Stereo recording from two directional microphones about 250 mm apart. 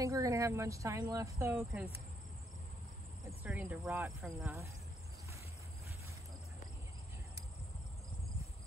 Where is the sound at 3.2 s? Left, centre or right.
Centre.